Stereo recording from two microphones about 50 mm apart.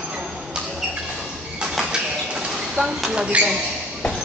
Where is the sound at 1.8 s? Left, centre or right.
Centre.